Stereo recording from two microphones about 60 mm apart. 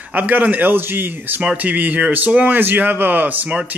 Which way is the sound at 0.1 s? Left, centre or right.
Right.